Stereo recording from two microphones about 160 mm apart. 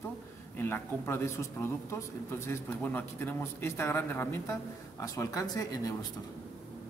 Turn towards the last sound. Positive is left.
turn(degrees=20)  # may be behind; listen again after turning